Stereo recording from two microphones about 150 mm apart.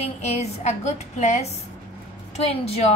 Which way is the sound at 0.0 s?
45° left (ahead or behind).